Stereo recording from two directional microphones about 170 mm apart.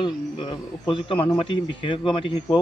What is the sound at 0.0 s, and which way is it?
A man's voice, 30° left (ahead or behind).